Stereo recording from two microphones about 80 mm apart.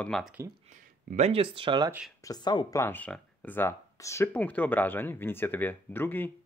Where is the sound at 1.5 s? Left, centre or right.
Right.